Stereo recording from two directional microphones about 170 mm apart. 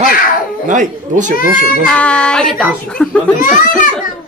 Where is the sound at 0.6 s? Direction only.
50° right (ahead or behind).